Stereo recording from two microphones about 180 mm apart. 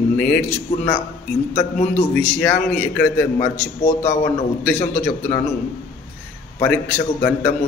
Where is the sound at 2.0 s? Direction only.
10° left (ahead or behind).